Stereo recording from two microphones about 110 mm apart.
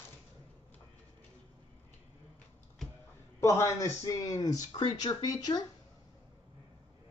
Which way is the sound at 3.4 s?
30° left (ahead or behind).